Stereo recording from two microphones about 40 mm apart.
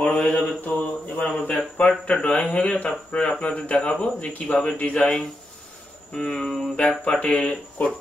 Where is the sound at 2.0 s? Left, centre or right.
Left.